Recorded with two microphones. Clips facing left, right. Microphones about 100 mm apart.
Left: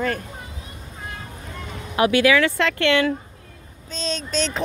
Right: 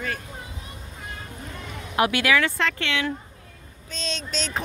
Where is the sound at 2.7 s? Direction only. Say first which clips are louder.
Left 9 dB; 60° left (ahead or behind).